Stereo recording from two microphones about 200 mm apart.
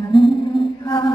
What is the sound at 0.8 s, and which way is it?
Chant, 25° left (ahead or behind).